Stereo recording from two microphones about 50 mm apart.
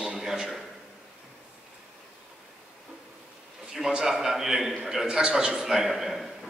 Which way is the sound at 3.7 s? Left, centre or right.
Centre.